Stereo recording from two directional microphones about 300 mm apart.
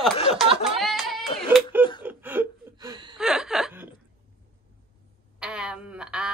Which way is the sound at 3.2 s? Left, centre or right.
Centre.